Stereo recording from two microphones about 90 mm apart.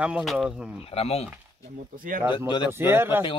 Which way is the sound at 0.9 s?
90° left.